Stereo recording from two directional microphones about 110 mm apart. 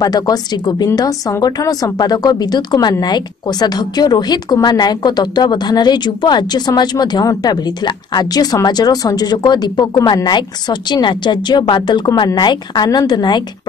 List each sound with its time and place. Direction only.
0.0 s a woman's voice: 35° left (ahead or behind)